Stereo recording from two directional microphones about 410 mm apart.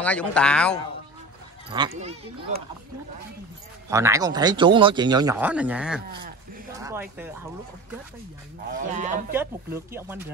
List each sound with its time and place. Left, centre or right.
0.0 s speech: centre
1.7 s speech: centre
3.9 s speech: centre
8.8 s speech: centre
9.3 s speech: centre